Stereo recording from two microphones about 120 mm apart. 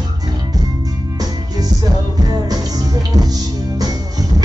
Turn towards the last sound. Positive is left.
turn(degrees=-30)  # may be behind; listen again after turning